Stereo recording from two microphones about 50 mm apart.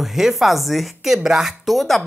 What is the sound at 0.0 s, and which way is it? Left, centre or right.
Speech, centre.